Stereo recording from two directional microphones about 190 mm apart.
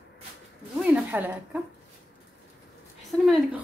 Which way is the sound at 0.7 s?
10° right (ahead or behind).